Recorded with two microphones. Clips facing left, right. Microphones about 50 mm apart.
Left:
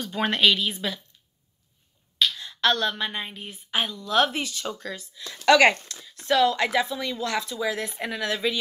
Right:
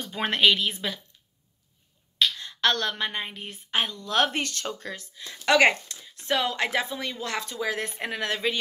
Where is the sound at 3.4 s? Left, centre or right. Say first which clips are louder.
Even; right.